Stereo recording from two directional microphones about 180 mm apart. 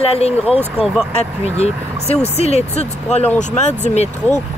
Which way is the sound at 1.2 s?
35° left (ahead or behind).